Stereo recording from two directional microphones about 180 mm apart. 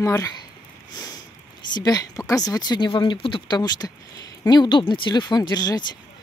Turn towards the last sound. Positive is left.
turn(degrees=25)  # may be behind; listen again after turning